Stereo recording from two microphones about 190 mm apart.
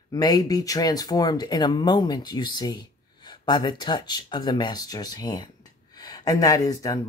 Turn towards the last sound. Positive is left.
turn(degrees=15)  # may be behind; listen again after turning